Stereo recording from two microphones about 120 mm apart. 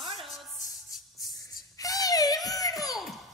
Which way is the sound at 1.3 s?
30° left (ahead or behind).